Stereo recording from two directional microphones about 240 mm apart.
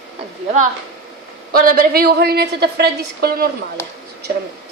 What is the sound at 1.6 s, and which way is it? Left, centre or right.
A woman's voice, right.